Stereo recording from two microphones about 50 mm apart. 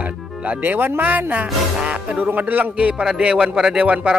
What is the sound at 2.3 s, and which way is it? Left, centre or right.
A man's voice, right.